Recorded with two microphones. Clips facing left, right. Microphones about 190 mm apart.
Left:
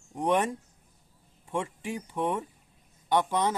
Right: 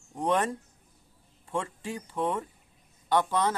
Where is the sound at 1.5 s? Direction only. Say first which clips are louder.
Left 1 dB; 15° left (ahead or behind).